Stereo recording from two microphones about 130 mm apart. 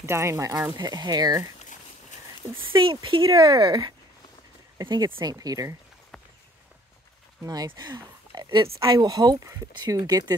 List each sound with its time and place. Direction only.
0.0 s speech: 20° right (ahead or behind)
2.5 s speech: 40° right (ahead or behind)
3.3 s speech: 25° right (ahead or behind)
7.4 s speech: 30° right (ahead or behind)